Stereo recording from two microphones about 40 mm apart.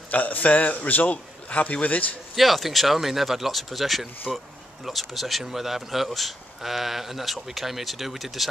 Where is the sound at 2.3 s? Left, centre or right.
Centre.